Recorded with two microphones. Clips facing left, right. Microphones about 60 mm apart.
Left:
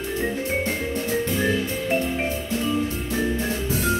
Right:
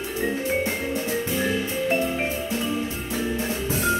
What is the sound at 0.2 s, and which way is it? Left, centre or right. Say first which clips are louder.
Music: right 2 dB; centre.